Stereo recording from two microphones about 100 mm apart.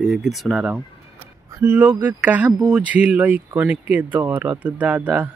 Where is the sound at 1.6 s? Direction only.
15° right (ahead or behind).